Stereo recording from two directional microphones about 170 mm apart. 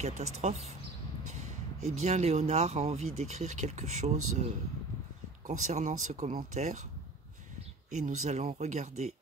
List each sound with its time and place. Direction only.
0.0 s speech: 40° right (ahead or behind)
2.0 s speech: 40° right (ahead or behind)
5.5 s speech: 45° right (ahead or behind)
7.9 s speech: 45° right (ahead or behind)